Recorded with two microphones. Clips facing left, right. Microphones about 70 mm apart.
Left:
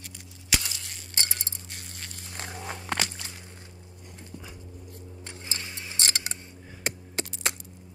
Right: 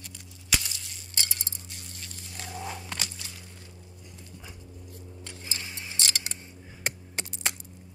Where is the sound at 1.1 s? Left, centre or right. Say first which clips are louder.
Left 2 dB; left.